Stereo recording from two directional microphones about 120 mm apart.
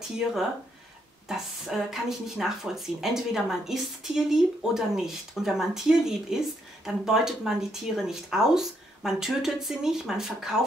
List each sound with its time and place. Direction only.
1.3 s speech: 5° right (ahead or behind)